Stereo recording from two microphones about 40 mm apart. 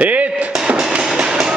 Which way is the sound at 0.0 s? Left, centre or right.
Right.